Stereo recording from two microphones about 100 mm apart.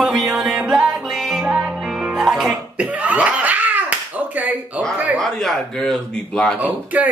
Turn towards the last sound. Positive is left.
turn(degrees=-15)  # may be behind; listen again after turning